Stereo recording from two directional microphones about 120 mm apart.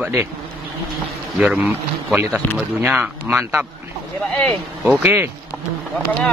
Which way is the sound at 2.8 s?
15° right (ahead or behind).